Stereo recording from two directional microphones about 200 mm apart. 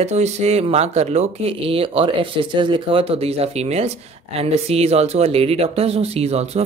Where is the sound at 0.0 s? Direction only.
35° right (ahead or behind).